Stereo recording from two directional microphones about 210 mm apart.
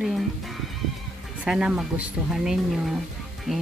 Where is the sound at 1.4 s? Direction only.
5° right (ahead or behind).